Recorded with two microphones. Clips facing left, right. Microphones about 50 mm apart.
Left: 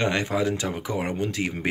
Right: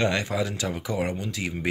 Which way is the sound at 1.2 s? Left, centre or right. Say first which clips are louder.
Left 4 dB; left.